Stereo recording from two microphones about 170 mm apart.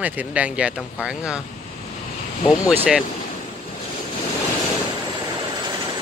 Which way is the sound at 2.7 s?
10° right (ahead or behind).